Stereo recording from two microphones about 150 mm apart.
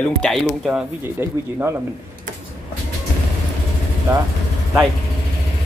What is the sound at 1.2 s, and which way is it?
Speech, 15° right (ahead or behind).